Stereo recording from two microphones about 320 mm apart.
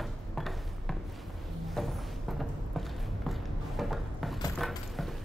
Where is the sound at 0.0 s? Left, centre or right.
Centre.